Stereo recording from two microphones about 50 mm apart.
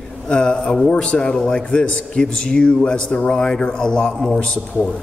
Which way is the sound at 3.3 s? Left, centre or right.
Centre.